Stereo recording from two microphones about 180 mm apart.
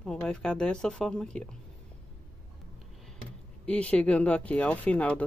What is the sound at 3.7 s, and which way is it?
Speech, 5° left (ahead or behind).